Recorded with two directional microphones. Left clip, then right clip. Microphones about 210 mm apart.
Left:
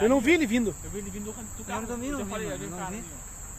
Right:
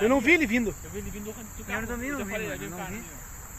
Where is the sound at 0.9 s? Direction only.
40° left (ahead or behind).